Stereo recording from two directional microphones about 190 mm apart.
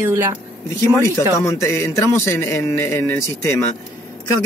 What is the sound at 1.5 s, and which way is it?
Speech, 15° left (ahead or behind).